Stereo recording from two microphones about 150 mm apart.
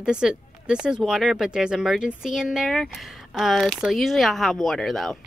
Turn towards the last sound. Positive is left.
turn(degrees=0)  # may be behind; listen again after turning